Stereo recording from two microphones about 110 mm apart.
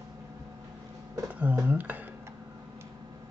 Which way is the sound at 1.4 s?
15° right (ahead or behind).